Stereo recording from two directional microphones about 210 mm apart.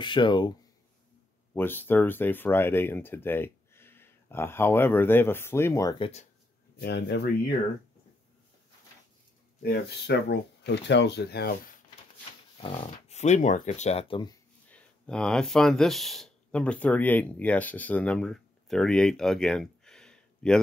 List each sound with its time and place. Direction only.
0.0 s speech: 20° left (ahead or behind)
1.5 s speech: 10° left (ahead or behind)
6.8 s speech: 55° left (ahead or behind)
9.6 s speech: 50° left (ahead or behind)
12.6 s speech: 25° left (ahead or behind)
14.7 s speech: 5° left (ahead or behind)